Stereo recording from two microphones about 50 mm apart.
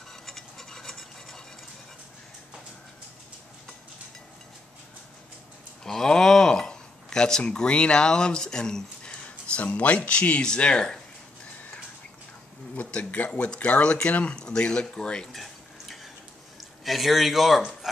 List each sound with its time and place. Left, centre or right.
0.1 s a sound: centre
5.9 s speech: centre
12.7 s a sound: left
13.3 s speech: centre
15.3 s drip: centre
16.5 s speech: centre